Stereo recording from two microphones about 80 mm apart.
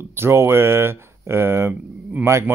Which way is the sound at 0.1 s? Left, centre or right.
Right.